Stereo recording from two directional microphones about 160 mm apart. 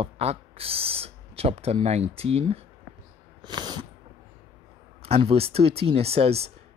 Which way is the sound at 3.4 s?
30° right (ahead or behind).